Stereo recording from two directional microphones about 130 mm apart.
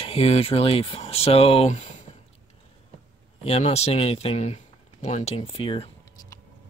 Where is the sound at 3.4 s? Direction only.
55° left (ahead or behind).